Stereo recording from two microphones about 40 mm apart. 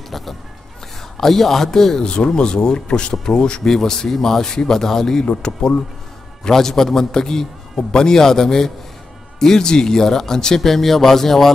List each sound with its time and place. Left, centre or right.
0.1 s a man's voice: centre
2.0 s a man's voice: left
5.4 s speech: left
6.4 s a man's voice: centre